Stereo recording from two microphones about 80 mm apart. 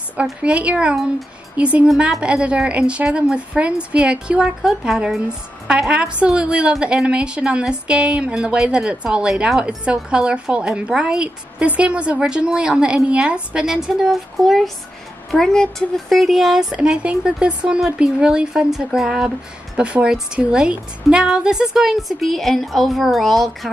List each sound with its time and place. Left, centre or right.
0.2 s a woman's voice: centre